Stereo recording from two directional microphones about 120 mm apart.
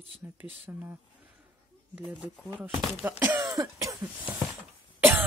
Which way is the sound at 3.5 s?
25° right (ahead or behind).